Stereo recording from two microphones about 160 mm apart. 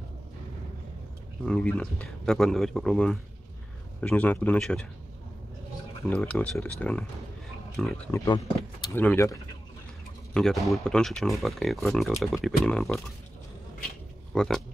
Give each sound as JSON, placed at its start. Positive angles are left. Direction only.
{"t": 1.4, "sound": "speech", "side_deg": 5}
{"t": 6.0, "sound": "speech", "side_deg": 10}
{"t": 8.1, "sound": "speech", "side_deg": 20}
{"t": 10.3, "sound": "speech", "side_deg": 0}
{"t": 14.3, "sound": "speech", "side_deg": 5}